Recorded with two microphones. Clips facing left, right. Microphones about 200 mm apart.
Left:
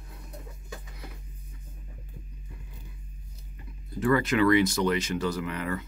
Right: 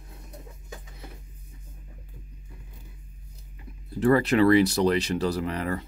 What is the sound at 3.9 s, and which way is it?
Speech, 35° right (ahead or behind).